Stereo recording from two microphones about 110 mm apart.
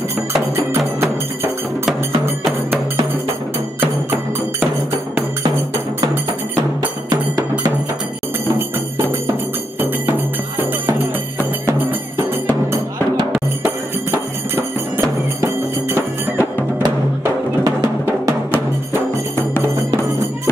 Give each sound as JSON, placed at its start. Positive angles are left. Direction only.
{"t": 9.8, "sound": "music", "side_deg": -20}
{"t": 14.1, "sound": "music", "side_deg": -20}
{"t": 19.3, "sound": "music", "side_deg": 25}